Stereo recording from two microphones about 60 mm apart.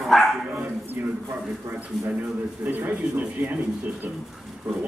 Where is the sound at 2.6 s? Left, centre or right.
Right.